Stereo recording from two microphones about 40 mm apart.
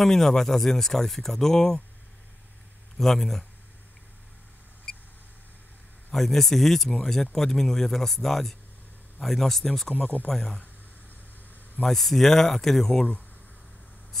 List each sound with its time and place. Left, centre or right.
0.0 s speech: centre
3.0 s speech: centre
6.1 s speech: centre
9.9 s speech: left
10.3 s speech: centre
11.8 s speech: centre